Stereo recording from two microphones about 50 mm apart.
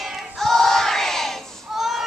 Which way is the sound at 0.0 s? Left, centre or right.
Centre.